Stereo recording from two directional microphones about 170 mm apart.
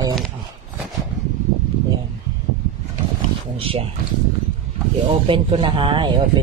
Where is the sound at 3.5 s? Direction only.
35° right (ahead or behind).